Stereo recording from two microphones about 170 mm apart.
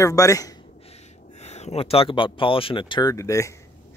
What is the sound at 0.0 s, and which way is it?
Speech, 20° left (ahead or behind).